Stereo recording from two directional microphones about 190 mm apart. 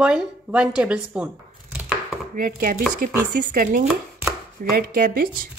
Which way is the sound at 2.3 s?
45° right (ahead or behind).